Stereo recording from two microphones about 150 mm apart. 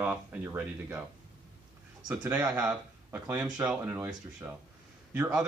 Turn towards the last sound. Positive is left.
turn(degrees=-5)  # may be behind; listen again after turning